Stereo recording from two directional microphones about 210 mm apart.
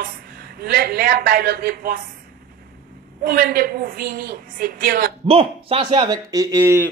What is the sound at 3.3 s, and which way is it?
Speech, 45° right (ahead or behind).